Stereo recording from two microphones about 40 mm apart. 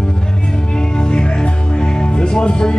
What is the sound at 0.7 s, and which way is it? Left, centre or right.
Music, centre.